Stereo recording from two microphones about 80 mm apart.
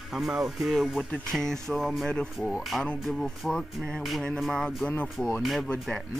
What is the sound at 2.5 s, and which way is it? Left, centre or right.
Speech, centre.